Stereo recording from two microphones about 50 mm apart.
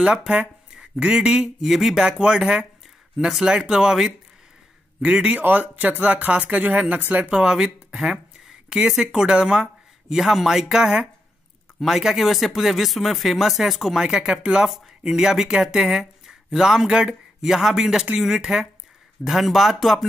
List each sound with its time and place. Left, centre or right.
0.7 s speech: centre
1.6 s speech: centre
2.0 s speech: centre
5.0 s speech: right
7.3 s speech: centre